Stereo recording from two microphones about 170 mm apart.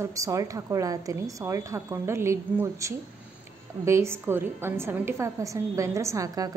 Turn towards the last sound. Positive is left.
turn(degrees=-20)  # may be behind; listen again after turning